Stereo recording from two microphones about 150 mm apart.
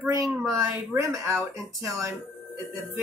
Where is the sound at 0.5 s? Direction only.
20° right (ahead or behind).